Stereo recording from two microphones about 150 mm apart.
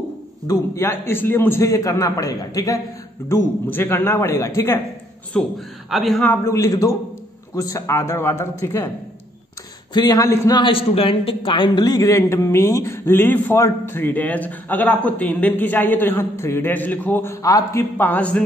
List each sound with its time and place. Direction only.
0.5 s a man's voice: 15° left (ahead or behind)
5.3 s a man's voice: 5° left (ahead or behind)
9.9 s a man's voice: 25° left (ahead or behind)
10.5 s a man's voice: 35° left (ahead or behind); by 18.4 s 10° left (ahead or behind)